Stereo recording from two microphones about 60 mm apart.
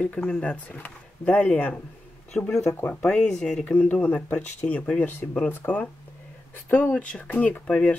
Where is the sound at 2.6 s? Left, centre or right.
Left.